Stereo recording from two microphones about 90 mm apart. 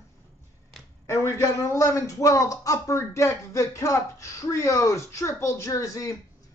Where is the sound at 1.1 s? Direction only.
30° left (ahead or behind).